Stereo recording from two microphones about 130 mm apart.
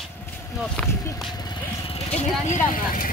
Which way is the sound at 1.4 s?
35° left (ahead or behind).